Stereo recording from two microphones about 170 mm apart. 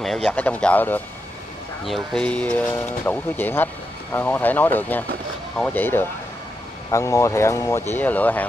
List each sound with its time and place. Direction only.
0.0 s speech: 5° left (ahead or behind)
2.1 s speech: 5° left (ahead or behind)